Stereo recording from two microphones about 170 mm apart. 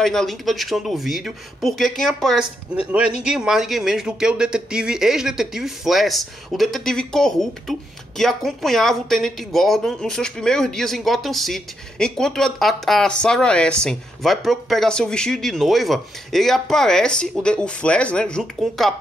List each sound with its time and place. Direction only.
0.0 s speech: centre (ahead or behind)